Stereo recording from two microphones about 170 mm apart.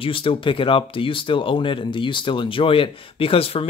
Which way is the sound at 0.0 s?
30° left (ahead or behind).